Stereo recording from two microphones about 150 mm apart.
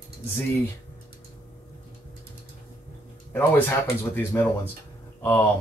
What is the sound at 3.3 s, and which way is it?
Speech, 15° left (ahead or behind).